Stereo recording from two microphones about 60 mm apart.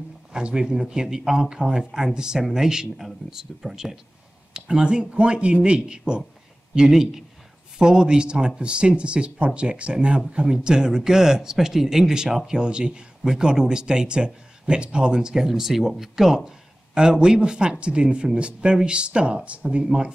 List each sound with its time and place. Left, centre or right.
0.3 s speech: centre